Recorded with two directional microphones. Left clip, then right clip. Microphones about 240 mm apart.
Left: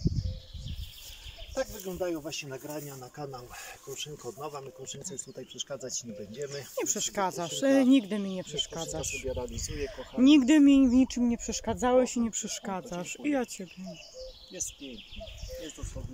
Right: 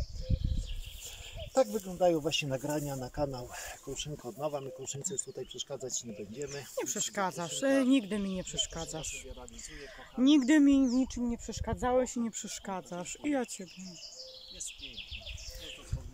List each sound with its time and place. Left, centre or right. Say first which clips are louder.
1.5 s speech: right 5 dB; right; by 6.0 s centre
6.3 s speech: left 3 dB; centre